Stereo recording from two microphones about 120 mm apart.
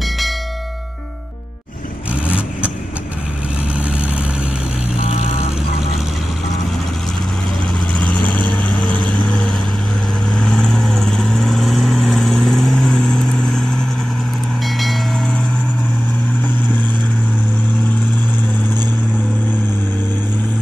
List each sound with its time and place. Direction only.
2.2 s vehicle: 10° right (ahead or behind)
8.0 s vehicle: 10° left (ahead or behind)
14.8 s train: centre (ahead or behind)